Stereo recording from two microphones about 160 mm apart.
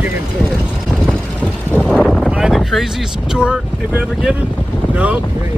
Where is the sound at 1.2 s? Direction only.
10° left (ahead or behind).